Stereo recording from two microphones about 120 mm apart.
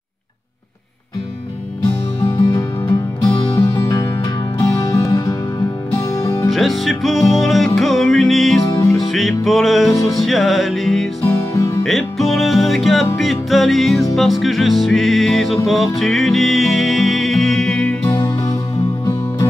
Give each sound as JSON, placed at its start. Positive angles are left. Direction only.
{"t": 2.2, "sound": "music", "side_deg": 25}
{"t": 6.5, "sound": "music", "side_deg": 0}
{"t": 11.2, "sound": "music", "side_deg": 25}
{"t": 11.8, "sound": "music", "side_deg": 0}
{"t": 18.0, "sound": "music", "side_deg": 25}